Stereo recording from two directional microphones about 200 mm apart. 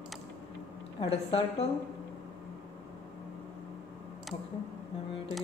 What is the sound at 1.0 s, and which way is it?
Speech, 30° left (ahead or behind).